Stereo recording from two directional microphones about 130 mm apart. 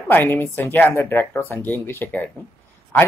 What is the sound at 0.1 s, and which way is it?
Speech, 15° left (ahead or behind).